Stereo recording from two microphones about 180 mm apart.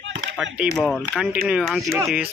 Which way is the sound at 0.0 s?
75° right (ahead or behind).